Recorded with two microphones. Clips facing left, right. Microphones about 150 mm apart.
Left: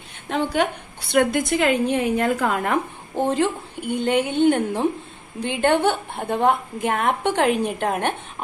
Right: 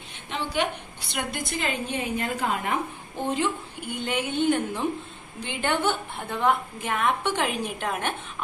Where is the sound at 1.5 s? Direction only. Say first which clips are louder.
Left 10 dB; 75° left (ahead or behind); by 2.8 s 60° left (ahead or behind).